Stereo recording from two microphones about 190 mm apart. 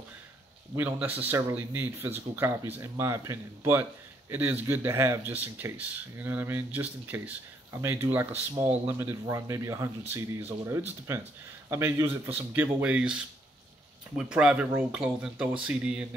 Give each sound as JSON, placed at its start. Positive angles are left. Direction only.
{"t": 0.7, "sound": "speech", "side_deg": -10}